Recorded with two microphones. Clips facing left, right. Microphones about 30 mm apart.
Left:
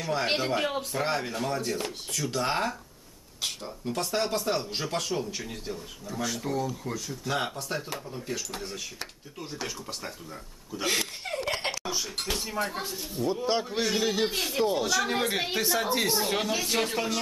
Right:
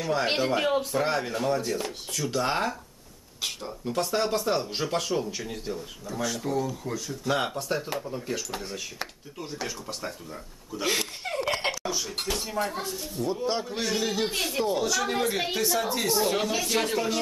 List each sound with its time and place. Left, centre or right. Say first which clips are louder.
0.0 s speech: right 2 dB; centre
10.7 s chuckle: right 1 dB; centre
11.9 s speech: right 1 dB; centre; by 16.2 s left
16.2 s speech: right 2 dB; centre